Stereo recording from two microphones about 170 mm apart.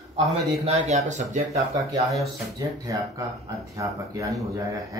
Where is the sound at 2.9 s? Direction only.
20° right (ahead or behind).